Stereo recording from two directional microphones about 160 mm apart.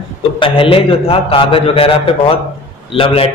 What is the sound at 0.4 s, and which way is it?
A man's voice, 35° left (ahead or behind).